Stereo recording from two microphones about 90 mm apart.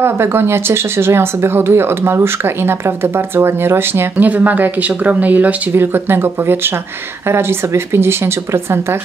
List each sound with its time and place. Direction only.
0.0 s speech: 25° right (ahead or behind)